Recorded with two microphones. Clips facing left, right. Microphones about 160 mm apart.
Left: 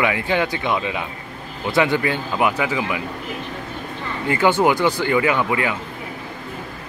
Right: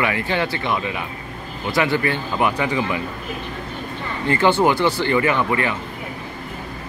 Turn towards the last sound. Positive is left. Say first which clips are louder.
# even
turn(degrees=15)  # may be behind; listen again after turning